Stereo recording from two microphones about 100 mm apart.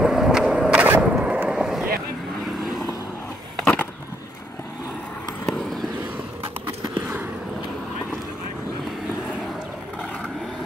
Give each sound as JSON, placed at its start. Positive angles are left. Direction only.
{"t": 0.0, "sound": "skateboard", "side_deg": -5}
{"t": 1.1, "sound": "vehicle", "side_deg": -10}
{"t": 5.5, "sound": "vehicle", "side_deg": 0}